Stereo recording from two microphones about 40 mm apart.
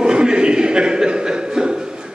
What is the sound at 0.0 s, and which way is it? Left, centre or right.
Chuckle, right.